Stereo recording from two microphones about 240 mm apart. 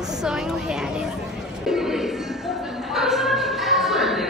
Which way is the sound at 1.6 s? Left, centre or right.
Centre.